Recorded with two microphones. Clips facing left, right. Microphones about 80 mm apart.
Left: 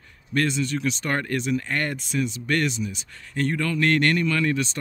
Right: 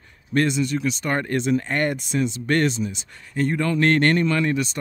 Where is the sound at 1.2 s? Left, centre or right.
Right.